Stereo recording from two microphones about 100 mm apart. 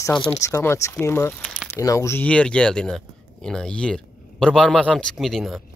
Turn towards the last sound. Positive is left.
turn(degrees=0)  # may be behind; listen again after turning